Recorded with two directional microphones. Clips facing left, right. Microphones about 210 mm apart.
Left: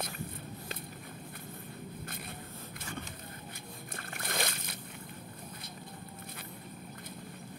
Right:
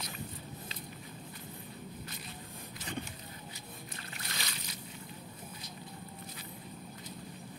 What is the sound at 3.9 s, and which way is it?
Splash, 50° left (ahead or behind).